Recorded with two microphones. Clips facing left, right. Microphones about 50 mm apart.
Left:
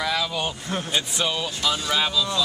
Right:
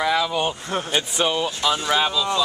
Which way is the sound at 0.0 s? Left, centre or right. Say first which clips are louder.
Right 4 dB; centre.